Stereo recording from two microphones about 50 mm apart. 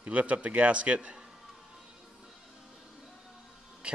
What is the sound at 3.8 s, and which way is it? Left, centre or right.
Music, right.